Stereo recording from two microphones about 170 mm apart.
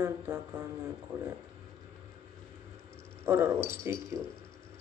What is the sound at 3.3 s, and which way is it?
Speech, 15° right (ahead or behind).